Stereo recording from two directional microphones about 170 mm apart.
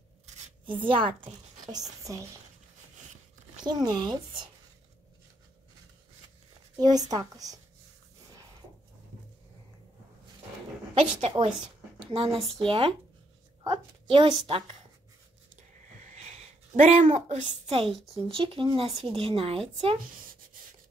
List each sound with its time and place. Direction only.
0.7 s a woman's voice: 30° right (ahead or behind)
3.6 s speech: 25° right (ahead or behind)
6.8 s speech: 20° right (ahead or behind)
11.0 s a woman's voice: 35° right (ahead or behind)
15.5 s a sound: 45° right (ahead or behind)
17.5 s a woman's voice: 30° right (ahead or behind)